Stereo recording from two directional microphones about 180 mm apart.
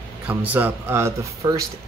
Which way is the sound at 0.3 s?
10° right (ahead or behind).